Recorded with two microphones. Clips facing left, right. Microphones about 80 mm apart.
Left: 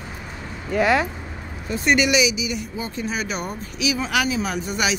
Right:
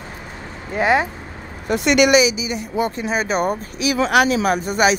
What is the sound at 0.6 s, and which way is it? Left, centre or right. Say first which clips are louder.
Speech: right 2 dB; right.